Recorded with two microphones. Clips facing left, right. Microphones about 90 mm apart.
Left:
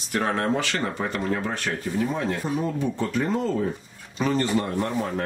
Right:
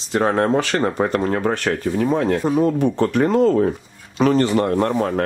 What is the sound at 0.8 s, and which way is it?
Speech, 50° right (ahead or behind).